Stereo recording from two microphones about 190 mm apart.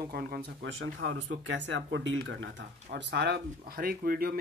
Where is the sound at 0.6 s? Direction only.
90° right.